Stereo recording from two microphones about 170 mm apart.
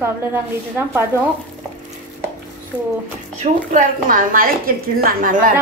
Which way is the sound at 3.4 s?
50° right (ahead or behind).